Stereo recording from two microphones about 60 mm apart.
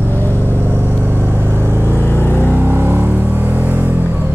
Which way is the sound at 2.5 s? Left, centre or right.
Right.